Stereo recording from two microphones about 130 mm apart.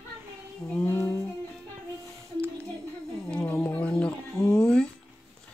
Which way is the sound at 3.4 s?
15° left (ahead or behind).